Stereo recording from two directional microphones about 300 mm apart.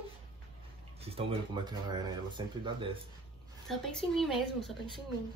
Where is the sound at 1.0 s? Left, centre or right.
Centre.